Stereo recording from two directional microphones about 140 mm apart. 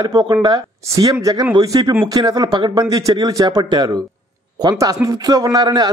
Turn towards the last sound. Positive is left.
turn(degrees=-30)  # may be behind; listen again after turning